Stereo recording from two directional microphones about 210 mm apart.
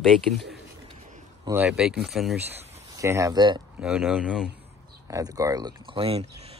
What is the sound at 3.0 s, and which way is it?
Speech, 15° right (ahead or behind).